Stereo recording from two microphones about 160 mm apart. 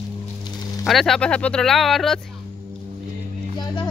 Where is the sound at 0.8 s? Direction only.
Centre (ahead or behind).